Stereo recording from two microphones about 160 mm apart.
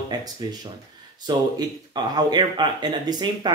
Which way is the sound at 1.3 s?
25° right (ahead or behind).